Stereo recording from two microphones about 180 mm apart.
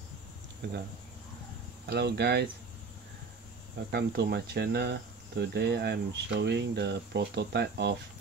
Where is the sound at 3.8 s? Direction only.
60° right (ahead or behind).